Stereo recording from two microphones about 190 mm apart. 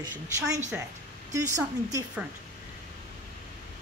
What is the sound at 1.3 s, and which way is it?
Speech, 15° right (ahead or behind).